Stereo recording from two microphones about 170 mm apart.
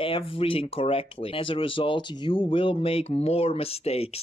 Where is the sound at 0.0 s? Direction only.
30° left (ahead or behind).